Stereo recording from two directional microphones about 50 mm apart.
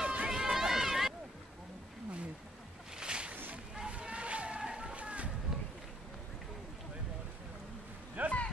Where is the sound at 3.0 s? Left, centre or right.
Centre.